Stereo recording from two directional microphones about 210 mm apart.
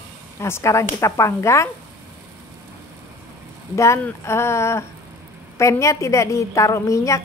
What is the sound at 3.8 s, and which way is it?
A woman's voice, 10° left (ahead or behind).